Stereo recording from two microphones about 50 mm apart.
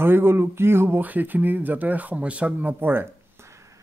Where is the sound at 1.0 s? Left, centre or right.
Right.